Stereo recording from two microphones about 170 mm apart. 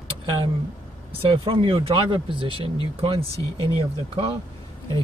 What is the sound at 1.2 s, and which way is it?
Speech, 30° right (ahead or behind).